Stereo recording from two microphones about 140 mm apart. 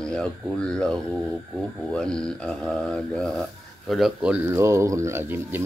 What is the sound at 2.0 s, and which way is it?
Speech, 5° left (ahead or behind).